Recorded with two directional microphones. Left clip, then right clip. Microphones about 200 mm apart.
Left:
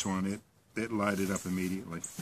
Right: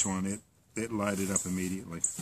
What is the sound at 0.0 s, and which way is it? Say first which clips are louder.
Speech: right 1 dB; 15° right (ahead or behind).